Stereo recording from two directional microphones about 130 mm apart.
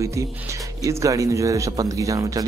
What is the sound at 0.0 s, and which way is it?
Speech, 25° right (ahead or behind).